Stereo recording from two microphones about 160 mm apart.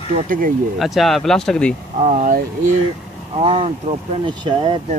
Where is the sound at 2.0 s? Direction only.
55° right (ahead or behind).